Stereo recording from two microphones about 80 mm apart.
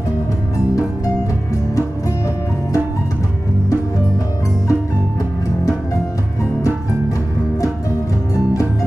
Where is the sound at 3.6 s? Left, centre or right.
Left.